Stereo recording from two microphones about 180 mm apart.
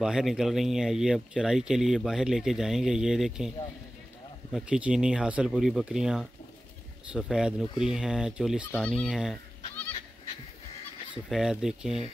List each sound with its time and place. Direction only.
0.0 s speech: centre (ahead or behind)
7.8 s fowl: 5° right (ahead or behind)
11.2 s speech: centre (ahead or behind)